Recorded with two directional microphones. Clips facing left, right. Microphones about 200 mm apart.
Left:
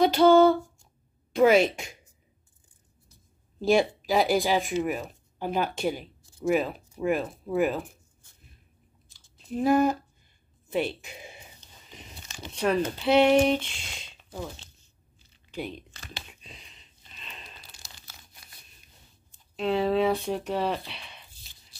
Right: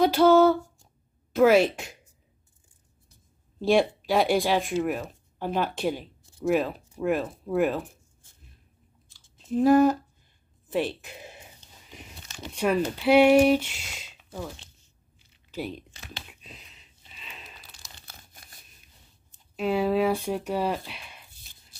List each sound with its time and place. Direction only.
0.0 s speech: 5° right (ahead or behind)
3.6 s speech: centre (ahead or behind)
9.5 s speech: 5° left (ahead or behind)
11.9 s a sound: 10° right (ahead or behind)
12.9 s speech: 10° right (ahead or behind)
15.5 s a sound: 5° right (ahead or behind)
18.0 s crumpling: 45° right (ahead or behind)
19.5 s speech: 10° right (ahead or behind)